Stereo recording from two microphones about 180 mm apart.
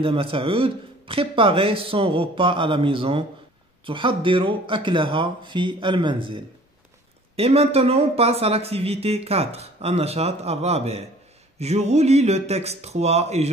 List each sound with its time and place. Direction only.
0.0 s speech: 30° right (ahead or behind)